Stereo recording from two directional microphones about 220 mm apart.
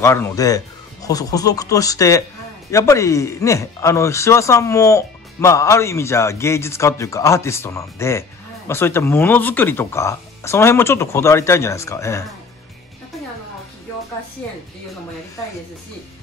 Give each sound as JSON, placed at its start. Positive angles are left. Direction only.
{"t": 0.0, "sound": "speech", "side_deg": 10}